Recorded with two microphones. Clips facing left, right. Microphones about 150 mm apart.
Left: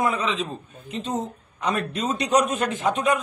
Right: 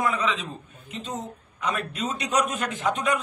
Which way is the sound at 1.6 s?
35° left (ahead or behind).